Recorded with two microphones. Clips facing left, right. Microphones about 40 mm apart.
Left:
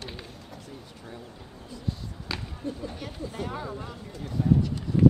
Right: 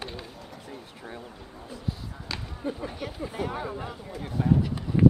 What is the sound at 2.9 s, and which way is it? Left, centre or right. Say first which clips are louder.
Speech: right 3 dB; centre.